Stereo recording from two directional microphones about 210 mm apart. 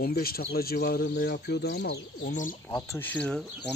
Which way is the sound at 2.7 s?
10° left (ahead or behind).